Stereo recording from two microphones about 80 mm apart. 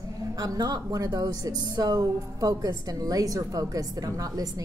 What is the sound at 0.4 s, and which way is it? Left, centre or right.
A woman's voice, right.